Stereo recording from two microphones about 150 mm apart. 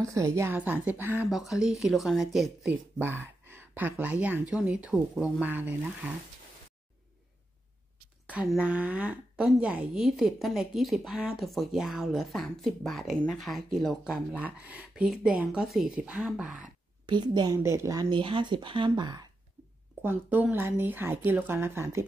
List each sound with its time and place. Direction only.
0.0 s speech: 20° right (ahead or behind)
1.3 s speech: centre (ahead or behind)
3.0 s speech: 15° right (ahead or behind)
8.3 s speech: 10° right (ahead or behind)
17.0 s a woman's voice: 30° right (ahead or behind)
18.1 s speech: 35° right (ahead or behind)
20.0 s speech: 15° right (ahead or behind)